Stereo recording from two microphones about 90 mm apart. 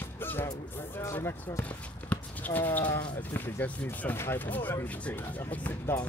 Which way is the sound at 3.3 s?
20° left (ahead or behind).